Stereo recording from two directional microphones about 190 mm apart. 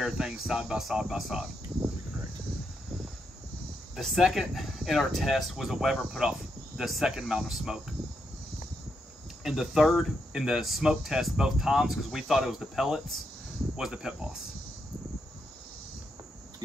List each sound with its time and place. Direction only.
0.0 s speech: 5° right (ahead or behind)
3.9 s speech: centre (ahead or behind)
9.4 s speech: centre (ahead or behind)